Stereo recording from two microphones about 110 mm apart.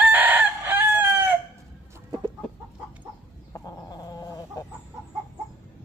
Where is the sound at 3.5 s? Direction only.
35° left (ahead or behind).